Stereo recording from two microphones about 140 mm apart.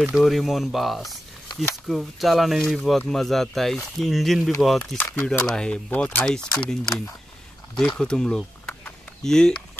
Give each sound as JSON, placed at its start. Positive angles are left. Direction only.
{"t": 0.1, "sound": "speech", "side_deg": 0}
{"t": 4.9, "sound": "speech", "side_deg": 15}
{"t": 5.2, "sound": "speech", "side_deg": 5}
{"t": 7.7, "sound": "speech", "side_deg": 5}